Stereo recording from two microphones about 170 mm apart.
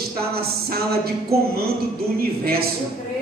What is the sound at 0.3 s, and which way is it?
A man's voice, 65° right (ahead or behind).